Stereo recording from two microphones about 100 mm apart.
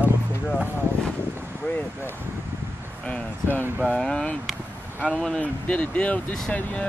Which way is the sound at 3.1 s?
15° left (ahead or behind).